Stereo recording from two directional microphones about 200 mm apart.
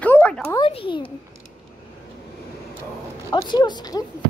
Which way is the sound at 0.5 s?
25° left (ahead or behind).